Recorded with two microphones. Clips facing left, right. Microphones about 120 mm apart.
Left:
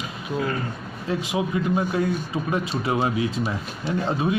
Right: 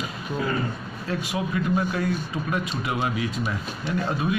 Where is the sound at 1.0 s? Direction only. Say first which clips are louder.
Left 3 dB; 20° left (ahead or behind).